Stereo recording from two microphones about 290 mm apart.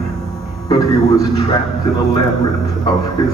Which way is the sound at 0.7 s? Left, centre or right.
Centre.